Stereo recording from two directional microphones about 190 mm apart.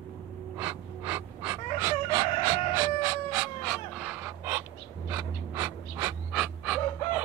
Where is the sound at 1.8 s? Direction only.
15° right (ahead or behind).